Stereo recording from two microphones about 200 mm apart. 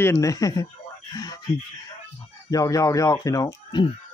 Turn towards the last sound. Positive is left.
turn(degrees=20)  # may be behind; listen again after turning